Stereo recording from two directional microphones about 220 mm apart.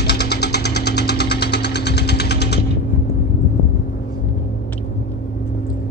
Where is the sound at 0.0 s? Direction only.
50° left (ahead or behind).